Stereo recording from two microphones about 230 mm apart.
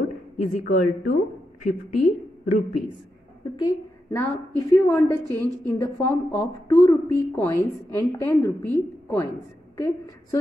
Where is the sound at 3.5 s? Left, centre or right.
Centre.